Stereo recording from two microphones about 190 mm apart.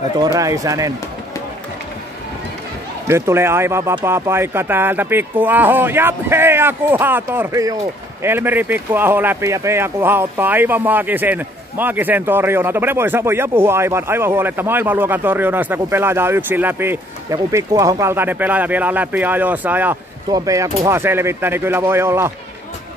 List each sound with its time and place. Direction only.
0.2 s speech: 20° right (ahead or behind)
3.1 s speech: 15° right (ahead or behind)